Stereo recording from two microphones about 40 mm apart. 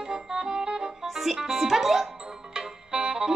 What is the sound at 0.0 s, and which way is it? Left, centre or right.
Music, centre.